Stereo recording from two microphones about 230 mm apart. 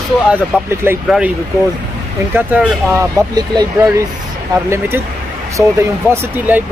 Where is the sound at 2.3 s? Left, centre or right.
Centre.